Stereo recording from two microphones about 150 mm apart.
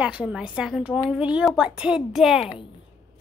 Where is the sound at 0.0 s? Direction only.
5° right (ahead or behind).